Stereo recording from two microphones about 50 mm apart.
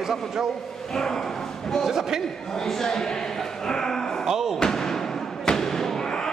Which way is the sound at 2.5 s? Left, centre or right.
Centre.